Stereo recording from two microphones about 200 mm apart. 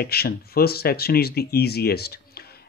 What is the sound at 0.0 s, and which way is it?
Speech, 50° left (ahead or behind).